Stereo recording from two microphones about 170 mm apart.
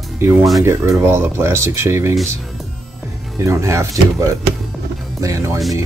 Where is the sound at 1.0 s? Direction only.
15° right (ahead or behind).